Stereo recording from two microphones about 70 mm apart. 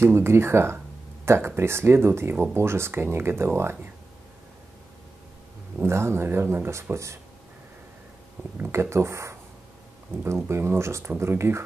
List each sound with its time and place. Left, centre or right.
0.0 s speech: right
5.9 s speech: right
8.4 s speech: right